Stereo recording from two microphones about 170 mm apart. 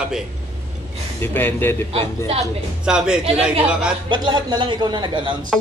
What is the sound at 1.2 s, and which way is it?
Speech, 15° left (ahead or behind).